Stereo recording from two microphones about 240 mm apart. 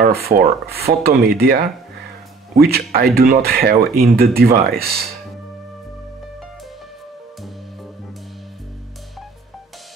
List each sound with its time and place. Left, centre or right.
0.0 s speech: right